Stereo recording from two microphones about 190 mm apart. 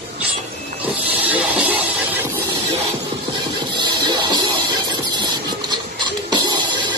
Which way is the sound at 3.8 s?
25° right (ahead or behind).